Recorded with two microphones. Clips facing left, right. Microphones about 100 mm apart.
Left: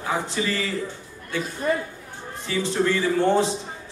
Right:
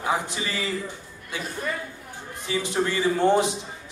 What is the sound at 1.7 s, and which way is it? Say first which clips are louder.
Speech: left 8 dB; 40° left (ahead or behind).